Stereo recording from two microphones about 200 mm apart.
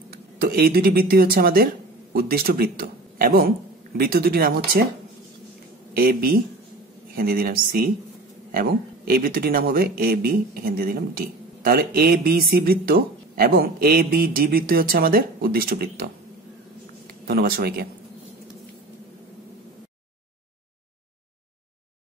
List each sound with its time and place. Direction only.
0.1 s speech: 50° right (ahead or behind)
5.9 s speech: 45° right (ahead or behind)
17.3 s speech: 50° right (ahead or behind)